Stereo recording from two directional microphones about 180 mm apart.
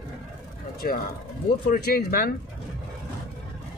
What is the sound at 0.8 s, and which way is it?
Speech, 55° left (ahead or behind).